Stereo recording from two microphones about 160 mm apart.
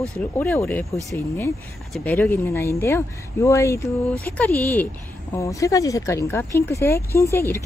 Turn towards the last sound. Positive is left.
turn(degrees=15)  # may be behind; listen again after turning